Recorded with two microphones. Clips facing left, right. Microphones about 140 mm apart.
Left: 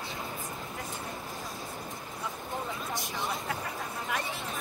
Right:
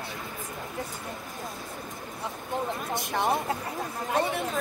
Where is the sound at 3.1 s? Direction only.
55° right (ahead or behind).